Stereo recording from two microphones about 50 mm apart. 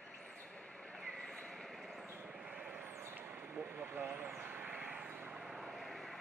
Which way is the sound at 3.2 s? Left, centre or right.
Right.